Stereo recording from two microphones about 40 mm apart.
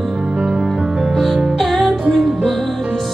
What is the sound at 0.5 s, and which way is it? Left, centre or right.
Music, centre.